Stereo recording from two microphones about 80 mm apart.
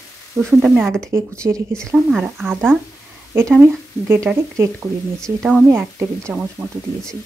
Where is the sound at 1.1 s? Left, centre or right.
Right.